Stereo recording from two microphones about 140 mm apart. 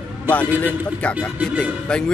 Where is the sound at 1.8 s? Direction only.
5° left (ahead or behind).